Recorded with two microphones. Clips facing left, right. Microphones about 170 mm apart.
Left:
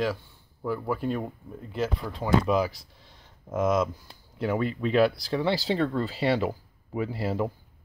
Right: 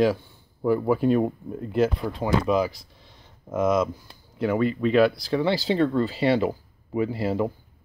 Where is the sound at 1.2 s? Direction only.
55° right (ahead or behind).